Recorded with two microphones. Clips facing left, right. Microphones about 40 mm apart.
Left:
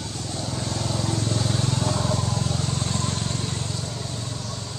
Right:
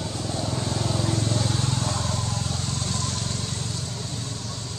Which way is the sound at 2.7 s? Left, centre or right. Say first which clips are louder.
Left 2 dB; centre.